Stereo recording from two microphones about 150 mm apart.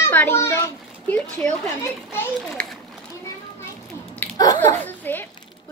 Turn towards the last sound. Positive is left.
turn(degrees=15)  # may be behind; listen again after turning